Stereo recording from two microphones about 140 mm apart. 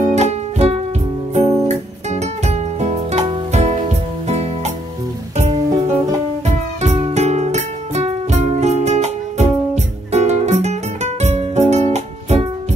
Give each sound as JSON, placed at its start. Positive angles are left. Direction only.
{"t": 0.0, "sound": "music", "side_deg": -55}